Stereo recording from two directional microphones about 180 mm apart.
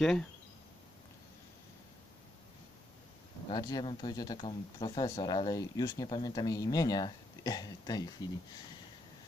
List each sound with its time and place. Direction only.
0.0 s speech: 5° left (ahead or behind)
3.4 s speech: 20° left (ahead or behind)